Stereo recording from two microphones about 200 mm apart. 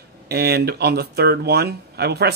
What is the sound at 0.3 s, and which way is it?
Speech, 55° right (ahead or behind).